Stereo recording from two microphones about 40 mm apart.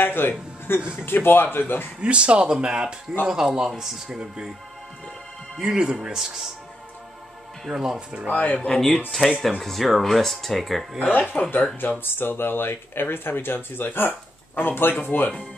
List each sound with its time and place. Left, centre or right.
0.0 s a man's voice: left
2.0 s a man's voice: right
5.6 s a man's voice: right
7.8 s speech: right
8.3 s speech: left
8.5 s speech: centre
9.1 s speech: centre
11.0 s speech: left
12.0 s speech: left